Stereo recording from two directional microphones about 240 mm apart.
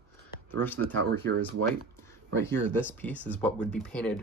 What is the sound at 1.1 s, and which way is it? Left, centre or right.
Speech, right.